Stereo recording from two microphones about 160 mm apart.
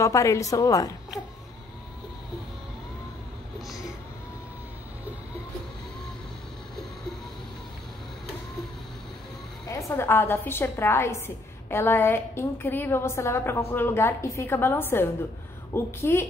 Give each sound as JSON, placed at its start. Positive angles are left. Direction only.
{"t": 0.0, "sound": "a woman's voice", "side_deg": 20}
{"t": 9.7, "sound": "a woman's voice", "side_deg": 20}